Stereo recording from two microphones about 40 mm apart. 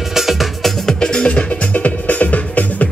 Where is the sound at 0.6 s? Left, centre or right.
Centre.